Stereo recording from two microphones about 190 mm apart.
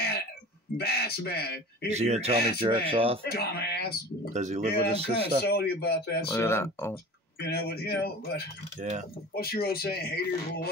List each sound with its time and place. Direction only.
0.7 s speech: 55° left (ahead or behind)
1.9 s speech: 35° right (ahead or behind)
3.3 s speech: 55° left (ahead or behind)
4.3 s speech: 40° right (ahead or behind)
5.4 s speech: 55° left (ahead or behind)
6.3 s speech: 15° left (ahead or behind)
7.3 s speech: 55° left (ahead or behind)
8.8 s speech: 45° right (ahead or behind)
9.3 s speech: 55° left (ahead or behind)